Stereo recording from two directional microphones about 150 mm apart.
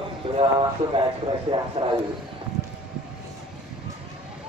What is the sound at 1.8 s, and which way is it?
Speech, 45° right (ahead or behind).